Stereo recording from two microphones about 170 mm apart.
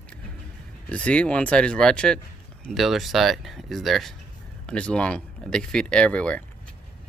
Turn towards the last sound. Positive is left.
turn(degrees=5)  # may be behind; listen again after turning